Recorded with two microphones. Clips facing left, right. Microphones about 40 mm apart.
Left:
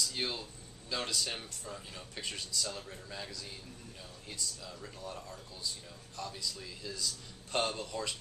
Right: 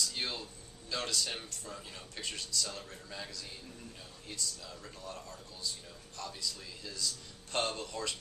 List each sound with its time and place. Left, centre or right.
0.0 s speech: centre